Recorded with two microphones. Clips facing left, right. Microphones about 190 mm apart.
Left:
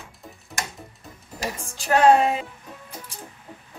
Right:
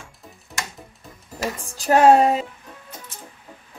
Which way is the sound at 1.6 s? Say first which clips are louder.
Right 3 dB; 35° right (ahead or behind).